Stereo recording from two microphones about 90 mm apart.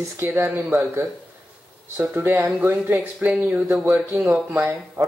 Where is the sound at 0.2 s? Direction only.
30° right (ahead or behind).